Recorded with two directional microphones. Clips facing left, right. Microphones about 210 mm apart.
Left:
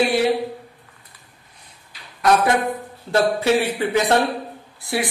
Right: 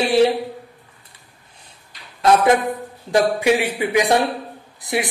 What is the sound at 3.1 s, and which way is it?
A woman's voice, 15° right (ahead or behind).